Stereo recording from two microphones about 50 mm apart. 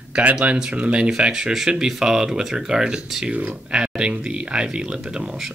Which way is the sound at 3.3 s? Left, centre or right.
Right.